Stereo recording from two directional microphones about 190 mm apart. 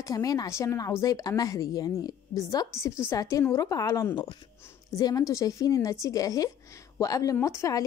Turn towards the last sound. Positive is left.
turn(degrees=15)  # may be behind; listen again after turning